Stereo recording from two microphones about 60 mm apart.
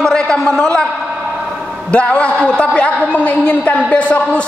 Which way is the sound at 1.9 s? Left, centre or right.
Left.